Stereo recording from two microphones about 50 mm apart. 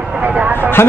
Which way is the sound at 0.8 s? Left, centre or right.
Left.